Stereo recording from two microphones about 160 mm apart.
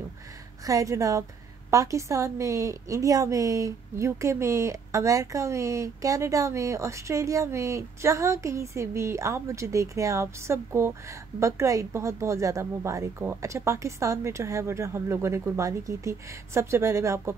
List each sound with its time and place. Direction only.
0.7 s a woman's voice: 20° right (ahead or behind)